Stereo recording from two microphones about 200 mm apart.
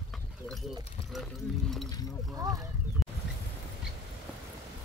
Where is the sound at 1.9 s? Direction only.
20° left (ahead or behind).